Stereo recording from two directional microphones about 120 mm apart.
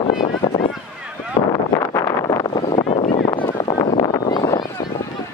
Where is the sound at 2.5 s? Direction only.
45° left (ahead or behind).